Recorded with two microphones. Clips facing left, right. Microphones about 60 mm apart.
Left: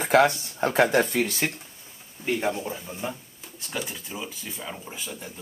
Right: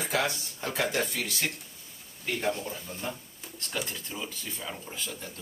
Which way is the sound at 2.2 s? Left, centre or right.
Centre.